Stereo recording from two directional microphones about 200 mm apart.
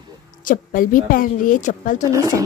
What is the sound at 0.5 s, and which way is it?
A woman's voice, 45° left (ahead or behind).